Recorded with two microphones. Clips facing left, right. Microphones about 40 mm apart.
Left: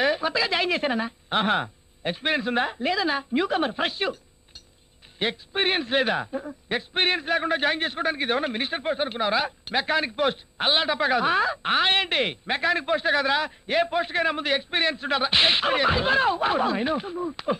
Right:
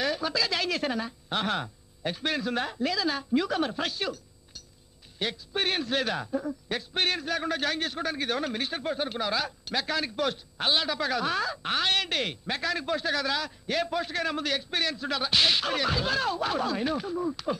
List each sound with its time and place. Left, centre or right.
0.0 s a man's voice: left